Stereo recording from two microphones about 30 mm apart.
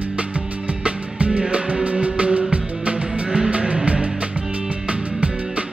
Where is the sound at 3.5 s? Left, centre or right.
Right.